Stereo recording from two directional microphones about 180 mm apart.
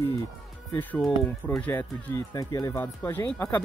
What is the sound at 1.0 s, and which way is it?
Speech, 5° left (ahead or behind).